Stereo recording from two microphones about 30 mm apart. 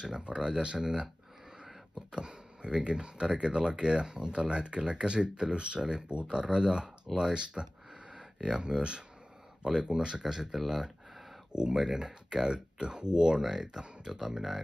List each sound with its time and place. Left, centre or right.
0.4 s speech: right
2.1 s speech: right
7.1 s speech: centre
7.6 s speech: centre
8.1 s speech: right
11.7 s speech: centre
12.0 s speech: right
12.5 s speech: right
13.4 s speech: centre